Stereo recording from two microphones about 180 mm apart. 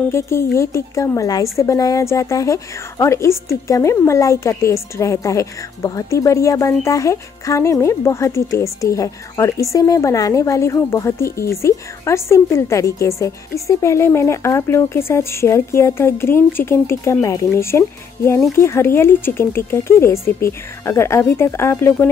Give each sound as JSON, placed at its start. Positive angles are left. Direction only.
{"t": 0.1, "sound": "a woman's voice", "side_deg": 15}